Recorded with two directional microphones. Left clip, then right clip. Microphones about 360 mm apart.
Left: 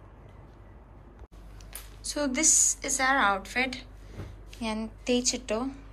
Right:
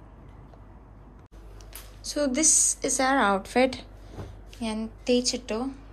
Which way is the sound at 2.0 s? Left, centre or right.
Centre.